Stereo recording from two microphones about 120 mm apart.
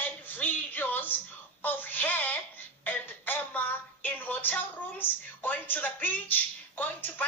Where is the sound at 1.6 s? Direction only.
15° left (ahead or behind).